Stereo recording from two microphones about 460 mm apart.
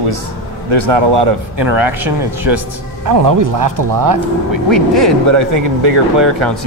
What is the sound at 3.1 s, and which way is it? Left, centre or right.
Speech, right.